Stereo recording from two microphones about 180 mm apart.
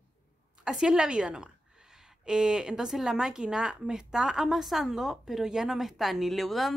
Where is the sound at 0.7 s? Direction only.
5° right (ahead or behind).